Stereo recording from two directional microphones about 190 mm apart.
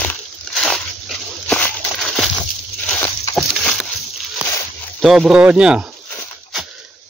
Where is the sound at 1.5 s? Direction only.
5° left (ahead or behind).